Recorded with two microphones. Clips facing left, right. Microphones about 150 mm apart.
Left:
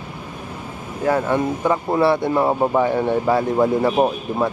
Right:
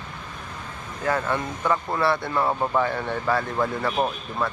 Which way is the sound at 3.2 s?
20° left (ahead or behind).